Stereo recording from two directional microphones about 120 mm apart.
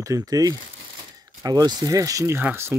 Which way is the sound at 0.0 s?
30° right (ahead or behind).